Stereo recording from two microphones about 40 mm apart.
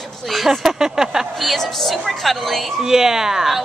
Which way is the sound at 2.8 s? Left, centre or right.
Centre.